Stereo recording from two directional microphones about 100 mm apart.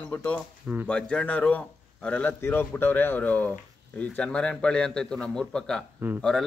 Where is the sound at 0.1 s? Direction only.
15° left (ahead or behind).